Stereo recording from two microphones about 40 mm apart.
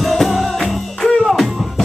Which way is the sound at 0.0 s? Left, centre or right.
Centre.